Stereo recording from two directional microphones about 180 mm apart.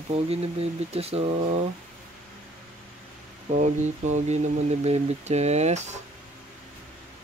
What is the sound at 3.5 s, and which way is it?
Speech, 40° right (ahead or behind).